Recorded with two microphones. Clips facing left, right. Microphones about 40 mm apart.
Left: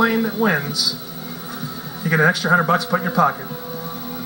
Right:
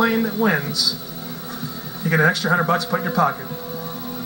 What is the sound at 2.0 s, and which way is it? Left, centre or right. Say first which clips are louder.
Speech: left 1 dB; centre.